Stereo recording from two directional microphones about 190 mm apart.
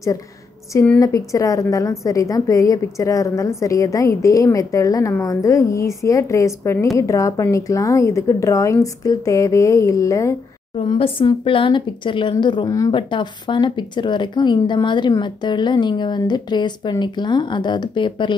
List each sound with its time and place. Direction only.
0.7 s a woman's voice: 15° left (ahead or behind)
10.8 s speech: 30° left (ahead or behind)